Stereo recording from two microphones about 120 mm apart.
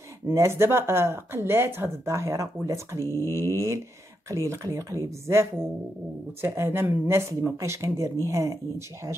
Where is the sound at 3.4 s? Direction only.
25° right (ahead or behind).